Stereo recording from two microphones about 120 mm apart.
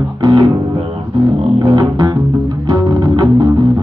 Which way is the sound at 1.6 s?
40° right (ahead or behind).